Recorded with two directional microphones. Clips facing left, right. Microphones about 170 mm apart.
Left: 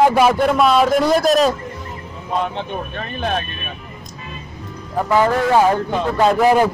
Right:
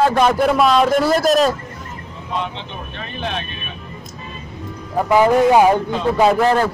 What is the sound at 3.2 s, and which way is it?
Speech, 45° left (ahead or behind).